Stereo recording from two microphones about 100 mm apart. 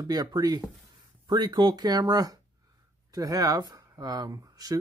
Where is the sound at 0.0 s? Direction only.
40° right (ahead or behind).